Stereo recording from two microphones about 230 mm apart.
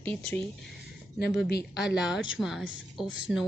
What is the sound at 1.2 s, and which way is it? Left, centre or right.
Speech, left.